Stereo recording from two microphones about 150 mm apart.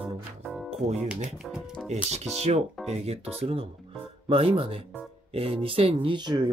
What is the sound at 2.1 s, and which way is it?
Speech, 45° right (ahead or behind).